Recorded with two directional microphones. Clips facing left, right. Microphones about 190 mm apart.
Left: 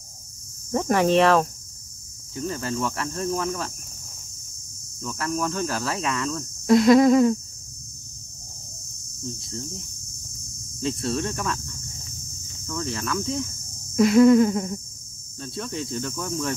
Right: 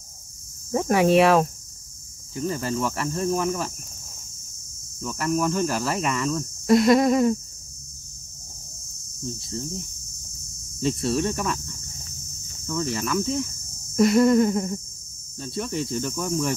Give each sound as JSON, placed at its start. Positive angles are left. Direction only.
{"t": 0.7, "sound": "cricket", "side_deg": -5}
{"t": 2.4, "sound": "speech", "side_deg": -5}
{"t": 5.0, "sound": "speech", "side_deg": -5}
{"t": 10.8, "sound": "speech", "side_deg": -5}
{"t": 12.6, "sound": "speech", "side_deg": -5}
{"t": 15.3, "sound": "cricket", "side_deg": -5}